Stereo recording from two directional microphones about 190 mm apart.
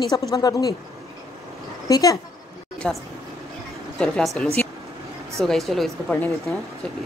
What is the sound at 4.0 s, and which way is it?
Speech, 5° left (ahead or behind).